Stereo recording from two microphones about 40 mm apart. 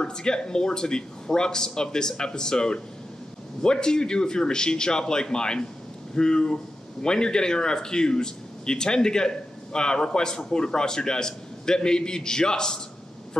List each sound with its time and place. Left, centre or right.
0.0 s speech: centre